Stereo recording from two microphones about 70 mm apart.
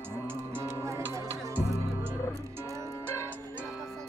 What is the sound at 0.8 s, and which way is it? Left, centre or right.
Music, right.